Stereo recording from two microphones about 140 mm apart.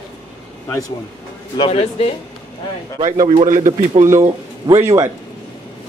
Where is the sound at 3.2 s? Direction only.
60° right (ahead or behind).